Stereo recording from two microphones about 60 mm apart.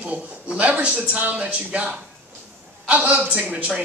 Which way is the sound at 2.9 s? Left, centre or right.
Right.